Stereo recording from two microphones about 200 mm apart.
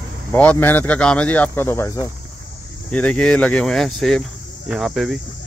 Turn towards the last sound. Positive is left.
turn(degrees=0)  # may be behind; listen again after turning